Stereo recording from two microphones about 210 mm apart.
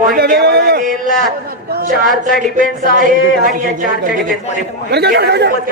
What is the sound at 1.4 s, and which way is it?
A man's voice, 45° right (ahead or behind).